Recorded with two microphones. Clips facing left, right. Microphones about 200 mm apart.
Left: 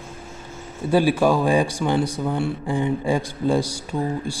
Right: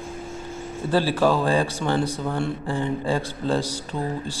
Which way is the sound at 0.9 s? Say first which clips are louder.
Left 3 dB; 15° left (ahead or behind).